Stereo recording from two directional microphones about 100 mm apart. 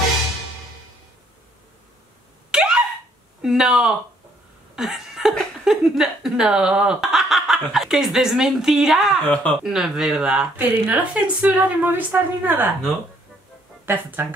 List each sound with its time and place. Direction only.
2.5 s a sound: 10° right (ahead or behind)
3.4 s speech: 5° right (ahead or behind)
9.3 s speech: 10° left (ahead or behind)
9.6 s speech: 5° right (ahead or behind)
13.8 s speech: 20° right (ahead or behind)